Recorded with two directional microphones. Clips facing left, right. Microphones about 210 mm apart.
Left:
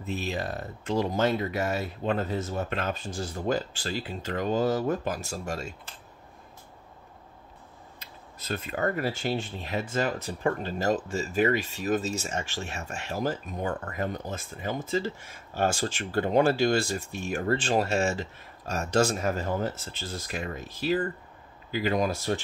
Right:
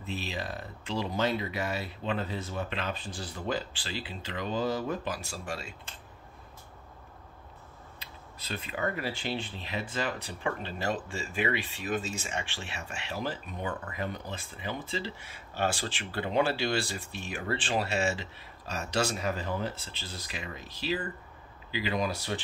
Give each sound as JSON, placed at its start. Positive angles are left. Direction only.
{"t": 0.0, "sound": "speech", "side_deg": 45}
{"t": 8.0, "sound": "speech", "side_deg": 45}